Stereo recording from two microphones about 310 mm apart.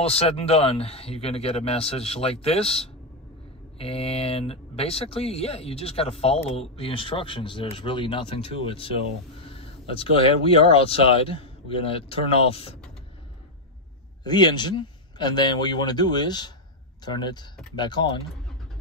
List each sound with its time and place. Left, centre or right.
0.0 s speech: centre
14.2 s a man's voice: centre